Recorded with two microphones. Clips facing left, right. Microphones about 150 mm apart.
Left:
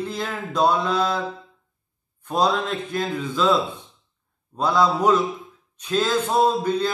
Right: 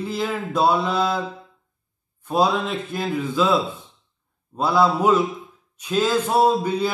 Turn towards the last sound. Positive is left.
turn(degrees=-10)  # may be behind; listen again after turning